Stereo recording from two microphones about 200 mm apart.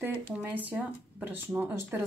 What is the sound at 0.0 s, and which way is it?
Speech, 10° right (ahead or behind).